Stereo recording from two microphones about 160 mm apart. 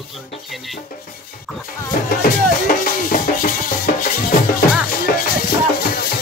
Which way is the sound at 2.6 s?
60° left (ahead or behind).